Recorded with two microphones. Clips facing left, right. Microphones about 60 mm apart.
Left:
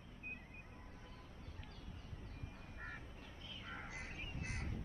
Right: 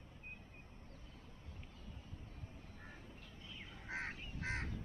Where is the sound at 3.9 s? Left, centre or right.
Right.